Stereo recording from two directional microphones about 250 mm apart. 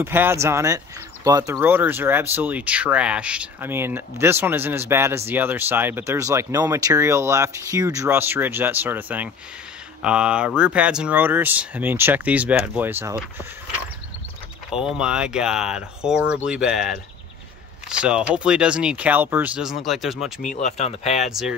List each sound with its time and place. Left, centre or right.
0.0 s speech: centre
14.7 s speech: centre
20.5 s speech: left
21.3 s speech: centre